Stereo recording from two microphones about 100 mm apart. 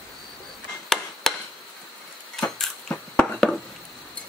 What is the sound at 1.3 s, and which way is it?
Chop, 5° left (ahead or behind).